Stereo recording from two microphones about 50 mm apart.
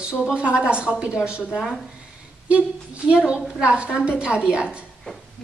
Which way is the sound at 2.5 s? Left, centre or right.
Right.